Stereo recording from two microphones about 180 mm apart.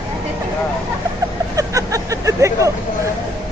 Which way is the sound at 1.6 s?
20° right (ahead or behind).